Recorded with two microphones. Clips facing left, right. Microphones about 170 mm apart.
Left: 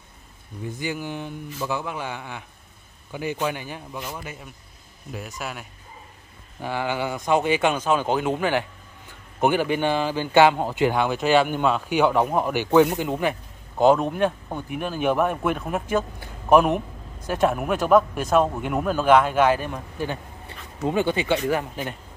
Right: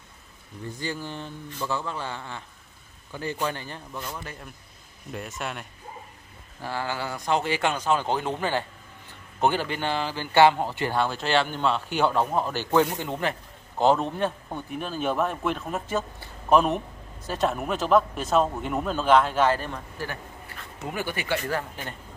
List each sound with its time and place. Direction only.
0.7 s speech: 15° left (ahead or behind)
6.6 s a man's voice: 15° left (ahead or behind)